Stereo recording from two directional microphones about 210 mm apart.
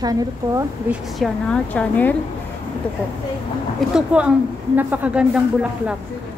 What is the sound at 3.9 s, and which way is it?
Speech, 5° right (ahead or behind).